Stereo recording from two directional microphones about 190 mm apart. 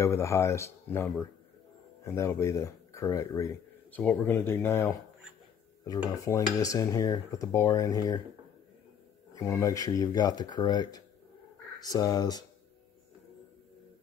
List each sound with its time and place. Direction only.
0.0 s speech: 15° left (ahead or behind)
2.0 s speech: 15° left (ahead or behind)
6.0 s dishes: 20° left (ahead or behind)
9.3 s dishes: 15° left (ahead or behind)